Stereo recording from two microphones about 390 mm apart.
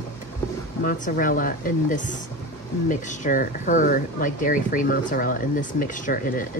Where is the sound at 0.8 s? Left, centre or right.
Left.